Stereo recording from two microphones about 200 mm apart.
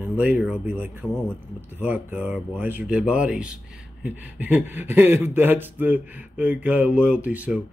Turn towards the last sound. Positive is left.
turn(degrees=-5)  # may be behind; listen again after turning